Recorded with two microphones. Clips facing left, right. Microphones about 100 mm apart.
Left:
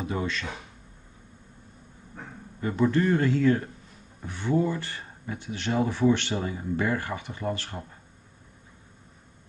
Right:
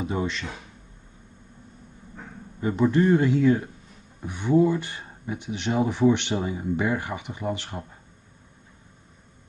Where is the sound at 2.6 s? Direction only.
15° right (ahead or behind).